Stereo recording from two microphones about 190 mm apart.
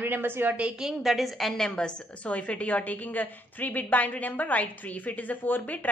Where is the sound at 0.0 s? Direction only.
10° right (ahead or behind).